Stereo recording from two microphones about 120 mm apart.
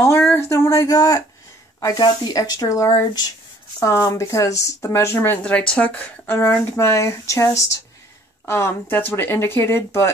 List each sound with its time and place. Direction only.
0.0 s a sound: 20° left (ahead or behind)
1.8 s speech: 30° left (ahead or behind)
5.4 s speech: 10° left (ahead or behind)